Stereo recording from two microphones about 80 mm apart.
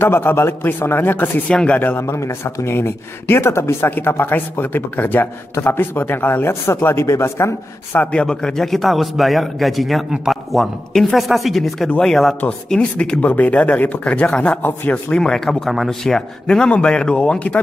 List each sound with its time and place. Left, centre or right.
0.0 s speech: left
1.5 s speech: centre
1.8 s a man's voice: left
8.0 s a man's voice: centre